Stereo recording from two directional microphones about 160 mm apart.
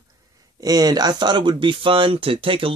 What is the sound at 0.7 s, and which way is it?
Speech, 25° right (ahead or behind).